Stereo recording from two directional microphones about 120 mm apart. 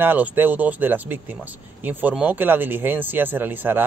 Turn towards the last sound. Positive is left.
turn(degrees=-15)  # may be behind; listen again after turning